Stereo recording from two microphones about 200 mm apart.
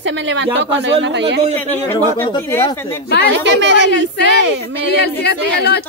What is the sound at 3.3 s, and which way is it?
Speech, 65° right (ahead or behind).